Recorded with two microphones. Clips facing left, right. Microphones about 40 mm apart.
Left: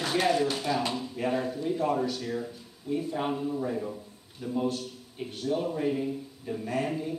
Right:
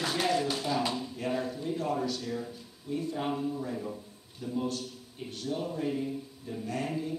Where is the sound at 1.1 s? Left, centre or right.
Centre.